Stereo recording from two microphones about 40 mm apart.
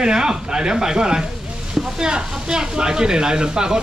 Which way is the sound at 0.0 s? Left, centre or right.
Centre.